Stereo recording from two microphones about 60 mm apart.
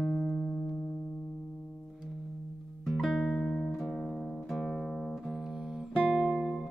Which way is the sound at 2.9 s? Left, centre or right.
Centre.